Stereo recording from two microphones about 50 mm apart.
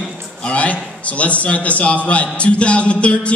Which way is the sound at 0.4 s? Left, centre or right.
Left.